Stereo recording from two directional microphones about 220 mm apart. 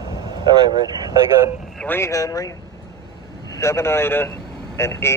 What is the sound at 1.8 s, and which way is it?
Speech, 10° left (ahead or behind).